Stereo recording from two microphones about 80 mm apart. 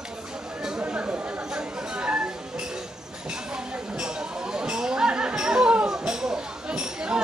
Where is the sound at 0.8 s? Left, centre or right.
Centre.